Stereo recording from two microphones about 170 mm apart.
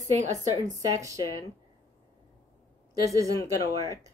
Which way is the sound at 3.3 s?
20° left (ahead or behind).